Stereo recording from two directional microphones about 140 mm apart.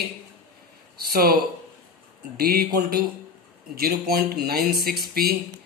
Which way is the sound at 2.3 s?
90° right.